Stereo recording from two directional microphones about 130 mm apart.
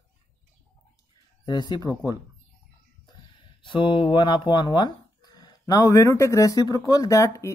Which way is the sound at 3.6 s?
40° left (ahead or behind).